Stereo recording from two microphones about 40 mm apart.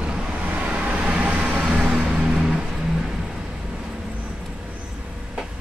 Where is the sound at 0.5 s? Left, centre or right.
Right.